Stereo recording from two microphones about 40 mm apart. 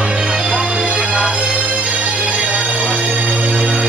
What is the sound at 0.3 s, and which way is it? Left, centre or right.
Music, centre.